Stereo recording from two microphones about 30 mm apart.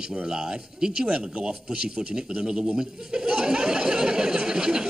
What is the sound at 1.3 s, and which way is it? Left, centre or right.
Speech, right.